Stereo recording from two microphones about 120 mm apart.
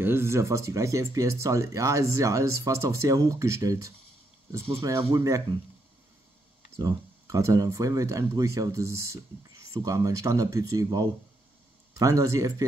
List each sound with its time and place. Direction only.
0.0 s speech: 20° right (ahead or behind)
6.8 s speech: 30° right (ahead or behind)